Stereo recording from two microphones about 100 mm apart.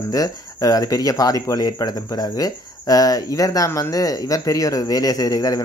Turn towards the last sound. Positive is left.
turn(degrees=40)  # may be behind; listen again after turning